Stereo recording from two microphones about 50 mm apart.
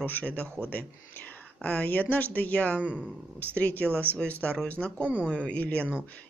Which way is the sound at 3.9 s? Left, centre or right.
Right.